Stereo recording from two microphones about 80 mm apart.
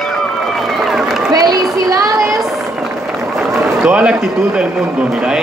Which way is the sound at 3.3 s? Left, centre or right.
Centre.